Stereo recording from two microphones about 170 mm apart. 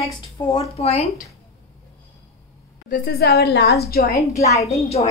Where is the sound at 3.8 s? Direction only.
65° left (ahead or behind).